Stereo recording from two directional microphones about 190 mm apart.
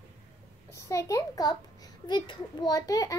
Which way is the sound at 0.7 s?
15° left (ahead or behind).